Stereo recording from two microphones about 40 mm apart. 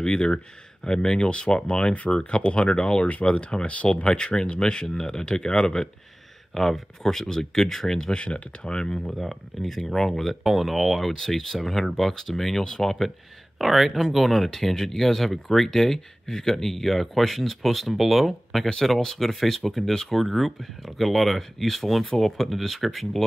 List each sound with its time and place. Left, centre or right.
0.0 s a sound: left
0.8 s speech: centre; by 3.9 s left
3.9 s speech: left
6.5 s speech: centre
8.1 s speech: left
9.1 s speech: centre
10.4 s speech: centre
13.6 s speech: centre